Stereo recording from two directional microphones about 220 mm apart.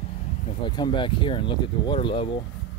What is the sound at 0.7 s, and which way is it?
Speech, 20° left (ahead or behind).